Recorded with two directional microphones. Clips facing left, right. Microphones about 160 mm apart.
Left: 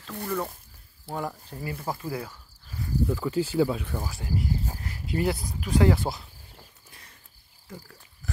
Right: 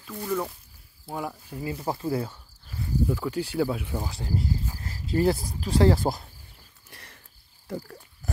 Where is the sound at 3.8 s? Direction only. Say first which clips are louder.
Right 1 dB; 20° right (ahead or behind).